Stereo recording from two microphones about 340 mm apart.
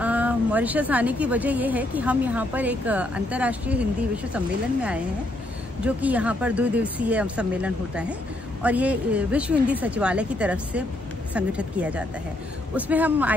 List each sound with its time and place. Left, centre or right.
0.0 s speech: centre
5.9 s speech: centre